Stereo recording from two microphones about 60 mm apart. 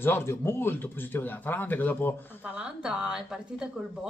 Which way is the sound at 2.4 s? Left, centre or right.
Centre.